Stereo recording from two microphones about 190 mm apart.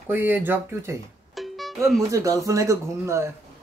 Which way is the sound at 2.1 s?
15° right (ahead or behind).